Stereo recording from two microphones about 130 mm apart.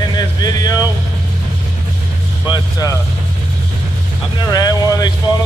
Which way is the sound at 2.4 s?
30° left (ahead or behind).